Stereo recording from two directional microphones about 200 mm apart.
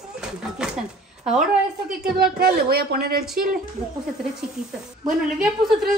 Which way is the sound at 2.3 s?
50° right (ahead or behind).